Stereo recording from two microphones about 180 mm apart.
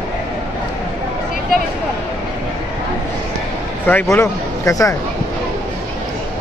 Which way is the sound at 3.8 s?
10° left (ahead or behind).